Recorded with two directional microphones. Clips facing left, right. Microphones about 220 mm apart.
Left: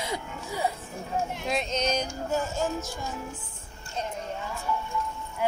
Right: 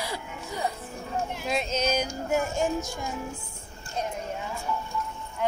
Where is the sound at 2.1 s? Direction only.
15° right (ahead or behind).